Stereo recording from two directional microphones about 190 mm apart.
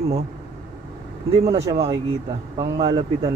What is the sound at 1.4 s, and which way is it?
Speech, 30° right (ahead or behind).